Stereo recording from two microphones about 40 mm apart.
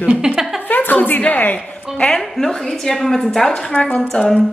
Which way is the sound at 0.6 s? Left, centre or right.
Left.